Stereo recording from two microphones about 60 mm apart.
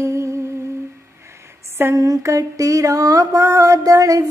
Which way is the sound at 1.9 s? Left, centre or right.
Right.